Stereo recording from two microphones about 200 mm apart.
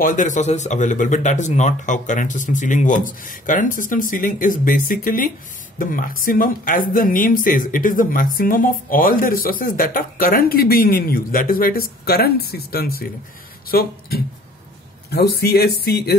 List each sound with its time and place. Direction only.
0.0 s speech: 40° left (ahead or behind)